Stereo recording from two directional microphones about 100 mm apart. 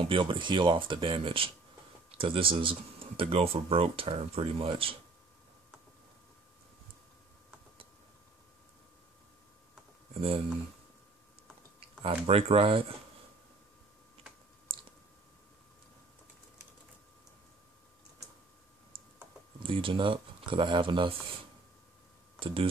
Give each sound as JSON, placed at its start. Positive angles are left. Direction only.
{"t": 0.0, "sound": "speech", "side_deg": -55}
{"t": 12.0, "sound": "speech", "side_deg": -70}
{"t": 19.6, "sound": "speech", "side_deg": -60}
{"t": 22.4, "sound": "speech", "side_deg": -60}